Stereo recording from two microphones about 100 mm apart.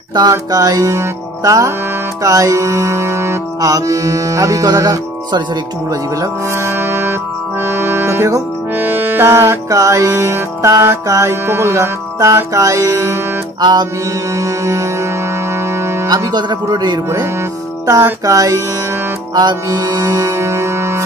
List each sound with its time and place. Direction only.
0.3 s music: 35° right (ahead or behind)
5.9 s music: 30° right (ahead or behind)
13.6 s music: 45° right (ahead or behind)
14.3 s music: 30° right (ahead or behind)
16.1 s speech: 45° right (ahead or behind)
18.2 s music: 35° right (ahead or behind)